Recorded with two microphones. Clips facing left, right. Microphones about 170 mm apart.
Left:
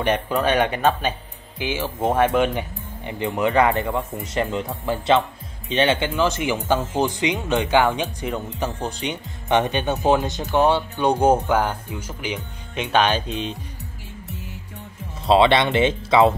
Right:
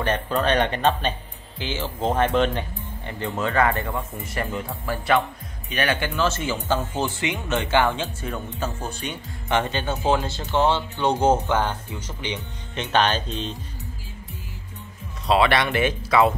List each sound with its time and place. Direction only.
0.0 s speech: 10° left (ahead or behind)
15.2 s speech: 25° left (ahead or behind)